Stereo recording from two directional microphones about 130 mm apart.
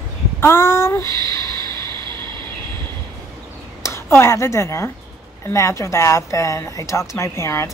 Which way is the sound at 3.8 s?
20° left (ahead or behind).